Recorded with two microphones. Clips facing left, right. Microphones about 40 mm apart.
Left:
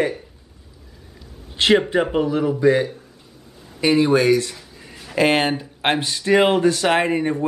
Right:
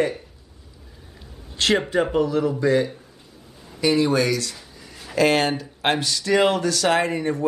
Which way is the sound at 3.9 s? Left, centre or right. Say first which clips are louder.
Left 6 dB; left.